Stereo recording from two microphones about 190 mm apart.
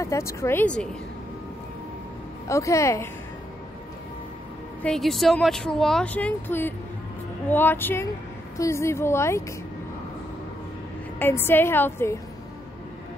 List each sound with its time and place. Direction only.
0.0 s a woman's voice: 15° left (ahead or behind)
2.4 s a woman's voice: 15° left (ahead or behind)
4.8 s a woman's voice: centre (ahead or behind)
11.1 s a woman's voice: 10° left (ahead or behind)